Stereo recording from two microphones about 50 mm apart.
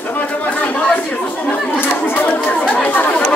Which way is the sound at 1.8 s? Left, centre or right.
Left.